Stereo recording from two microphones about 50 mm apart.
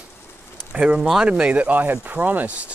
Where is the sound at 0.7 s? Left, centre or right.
Right.